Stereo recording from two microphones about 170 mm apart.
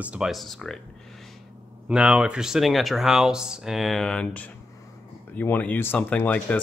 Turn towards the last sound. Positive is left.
turn(degrees=10)  # may be behind; listen again after turning